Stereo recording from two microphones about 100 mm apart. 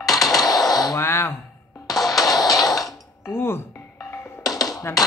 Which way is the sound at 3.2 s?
25° left (ahead or behind).